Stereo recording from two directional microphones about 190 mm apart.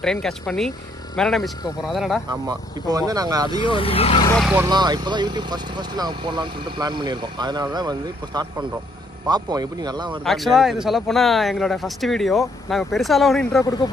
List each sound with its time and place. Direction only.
0.0 s speech: 5° left (ahead or behind)
2.2 s speech: 20° right (ahead or behind)
3.6 s speech: 30° left (ahead or behind)
4.4 s speech: 5° right (ahead or behind)
4.6 s speech: 20° right (ahead or behind)
10.2 s speech: centre (ahead or behind)